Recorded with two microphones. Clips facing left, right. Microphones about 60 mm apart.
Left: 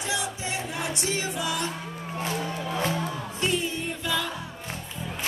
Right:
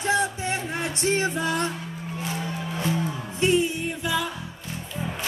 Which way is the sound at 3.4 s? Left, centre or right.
Right.